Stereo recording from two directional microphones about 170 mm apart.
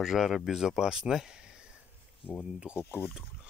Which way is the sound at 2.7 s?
10° left (ahead or behind).